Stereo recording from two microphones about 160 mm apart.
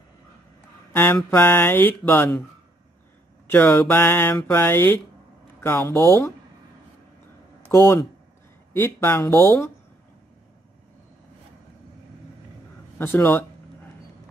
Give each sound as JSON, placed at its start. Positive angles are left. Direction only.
{"t": 0.9, "sound": "speech", "side_deg": 15}
{"t": 3.4, "sound": "speech", "side_deg": 10}
{"t": 7.7, "sound": "speech", "side_deg": 20}
{"t": 12.9, "sound": "speech", "side_deg": 15}